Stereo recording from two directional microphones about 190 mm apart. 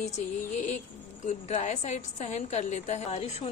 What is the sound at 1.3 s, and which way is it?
Speech, 40° left (ahead or behind).